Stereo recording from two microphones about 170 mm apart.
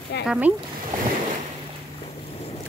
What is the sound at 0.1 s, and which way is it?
Speech, 80° left.